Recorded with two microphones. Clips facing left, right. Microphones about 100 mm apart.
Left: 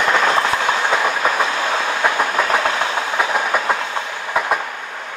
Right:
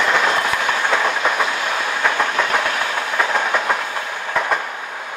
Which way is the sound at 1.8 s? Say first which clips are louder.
Left 1 dB; 20° left (ahead or behind).